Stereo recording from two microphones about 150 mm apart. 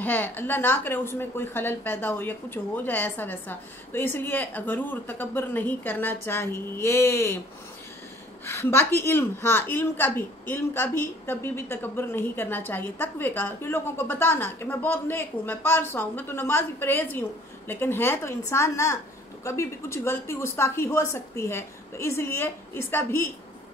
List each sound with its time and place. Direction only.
0.0 s a woman's voice: 15° left (ahead or behind)
8.5 s a woman's voice: 15° left (ahead or behind)